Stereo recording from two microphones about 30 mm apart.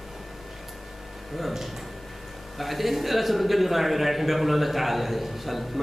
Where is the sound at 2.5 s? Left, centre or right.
Centre.